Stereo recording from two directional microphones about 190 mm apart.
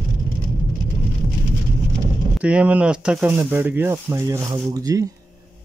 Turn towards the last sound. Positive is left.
turn(degrees=-15)  # may be behind; listen again after turning